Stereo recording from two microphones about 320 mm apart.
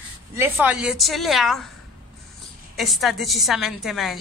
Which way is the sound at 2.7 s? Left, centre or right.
Centre.